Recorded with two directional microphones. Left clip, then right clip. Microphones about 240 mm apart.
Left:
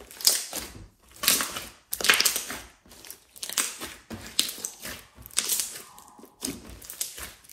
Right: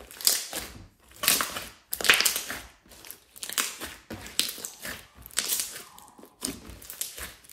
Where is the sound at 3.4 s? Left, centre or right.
Centre.